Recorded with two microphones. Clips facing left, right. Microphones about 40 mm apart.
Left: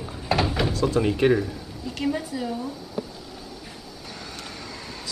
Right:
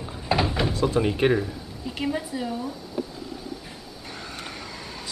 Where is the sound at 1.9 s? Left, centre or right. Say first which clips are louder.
Left 1 dB; centre.